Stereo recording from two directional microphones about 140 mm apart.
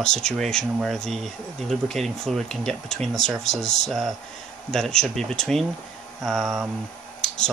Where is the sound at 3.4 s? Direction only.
55° left (ahead or behind).